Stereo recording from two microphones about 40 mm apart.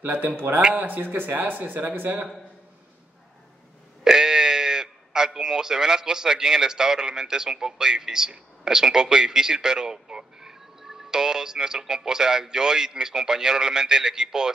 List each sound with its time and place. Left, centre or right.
0.7 s speech: right
4.0 s speech: centre